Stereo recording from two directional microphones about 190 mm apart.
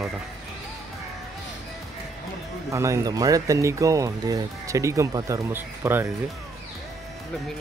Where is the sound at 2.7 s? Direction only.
15° right (ahead or behind).